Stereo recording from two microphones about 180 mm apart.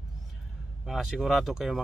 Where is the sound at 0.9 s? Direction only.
Centre (ahead or behind).